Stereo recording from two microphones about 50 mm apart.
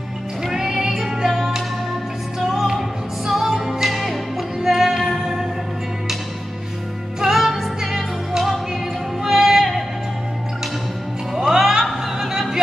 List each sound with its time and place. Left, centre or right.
0.4 s music: centre
7.3 s music: centre
11.3 s music: centre